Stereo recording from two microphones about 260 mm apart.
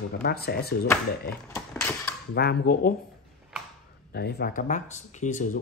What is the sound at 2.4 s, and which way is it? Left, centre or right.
Speech, left.